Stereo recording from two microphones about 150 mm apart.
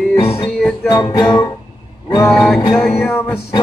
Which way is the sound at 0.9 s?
30° left (ahead or behind).